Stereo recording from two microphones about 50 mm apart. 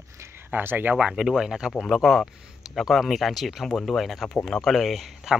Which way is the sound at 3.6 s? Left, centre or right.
Centre.